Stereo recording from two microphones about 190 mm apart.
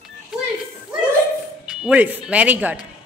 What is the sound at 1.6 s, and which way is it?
Speech, 5° right (ahead or behind).